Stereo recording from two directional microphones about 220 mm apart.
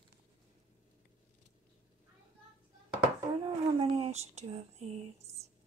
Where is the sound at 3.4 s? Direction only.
25° right (ahead or behind).